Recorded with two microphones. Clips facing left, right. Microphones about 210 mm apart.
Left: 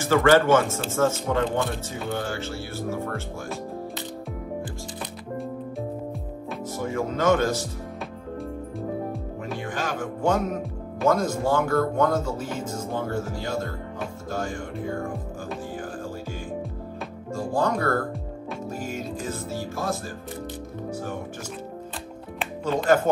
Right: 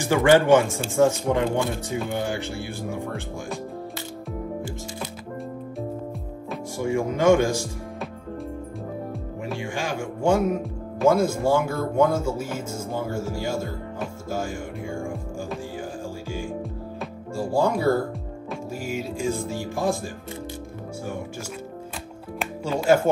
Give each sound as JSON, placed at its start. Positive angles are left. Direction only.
{"t": 0.0, "sound": "speech", "side_deg": -15}
{"t": 6.8, "sound": "speech", "side_deg": -15}
{"t": 9.6, "sound": "speech", "side_deg": -10}
{"t": 17.4, "sound": "speech", "side_deg": -10}
{"t": 22.7, "sound": "speech", "side_deg": -10}